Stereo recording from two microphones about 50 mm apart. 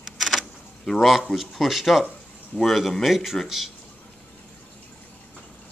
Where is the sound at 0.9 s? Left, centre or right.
Centre.